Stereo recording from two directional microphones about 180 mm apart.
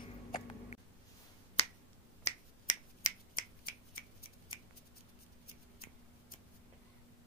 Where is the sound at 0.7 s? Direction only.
40° left (ahead or behind).